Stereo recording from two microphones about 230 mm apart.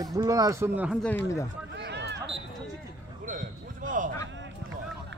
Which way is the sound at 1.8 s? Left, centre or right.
Right.